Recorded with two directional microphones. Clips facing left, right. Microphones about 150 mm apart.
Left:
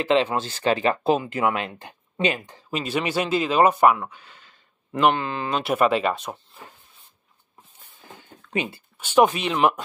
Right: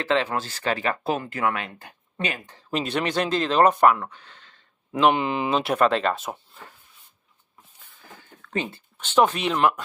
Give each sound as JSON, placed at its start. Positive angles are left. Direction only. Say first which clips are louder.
{"t": 0.0, "sound": "speech", "louder": "left 3 dB", "side_deg": 20}
{"t": 2.7, "sound": "speech", "louder": "even", "side_deg": 0}
{"t": 5.1, "sound": "speech", "louder": "right 3 dB", "side_deg": -15}
{"t": 5.5, "sound": "speech", "louder": "left 1 dB", "side_deg": 0}
{"t": 8.2, "sound": "a sound", "louder": "left 1 dB", "side_deg": 15}
{"t": 9.4, "sound": "speech", "louder": "left 1 dB", "side_deg": 0}